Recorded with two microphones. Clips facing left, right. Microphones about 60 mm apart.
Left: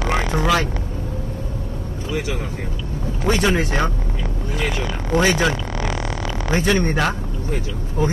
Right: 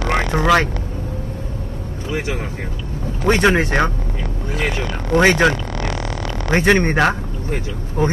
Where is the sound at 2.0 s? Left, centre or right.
Right.